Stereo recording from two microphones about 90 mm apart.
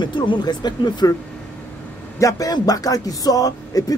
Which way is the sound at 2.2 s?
40° left (ahead or behind).